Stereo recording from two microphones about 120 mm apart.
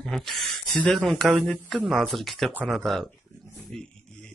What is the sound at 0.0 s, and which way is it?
A man's voice, 5° left (ahead or behind).